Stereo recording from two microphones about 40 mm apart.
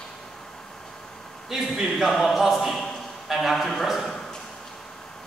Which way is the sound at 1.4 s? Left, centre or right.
Centre.